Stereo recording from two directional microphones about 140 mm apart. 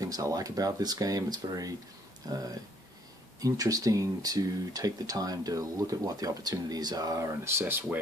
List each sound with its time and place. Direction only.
0.0 s speech: 25° right (ahead or behind)